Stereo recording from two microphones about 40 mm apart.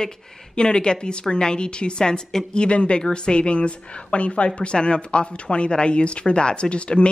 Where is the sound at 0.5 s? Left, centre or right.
Left.